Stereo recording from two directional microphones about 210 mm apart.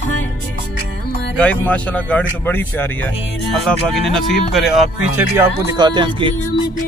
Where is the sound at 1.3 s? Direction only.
5° left (ahead or behind).